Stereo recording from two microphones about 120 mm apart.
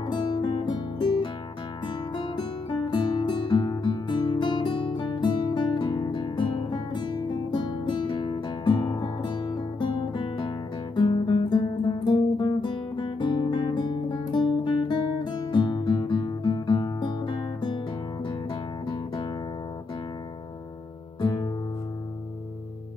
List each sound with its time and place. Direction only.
0.0 s music: 40° left (ahead or behind)
11.0 s guitar: 40° left (ahead or behind)
21.2 s music: 40° left (ahead or behind)